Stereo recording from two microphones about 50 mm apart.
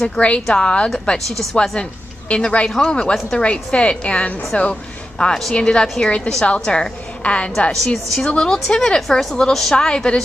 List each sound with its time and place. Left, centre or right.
0.0 s a woman's voice: left
1.1 s a woman's voice: centre
1.8 s a woman's voice: left
5.2 s a woman's voice: centre
9.8 s a woman's voice: centre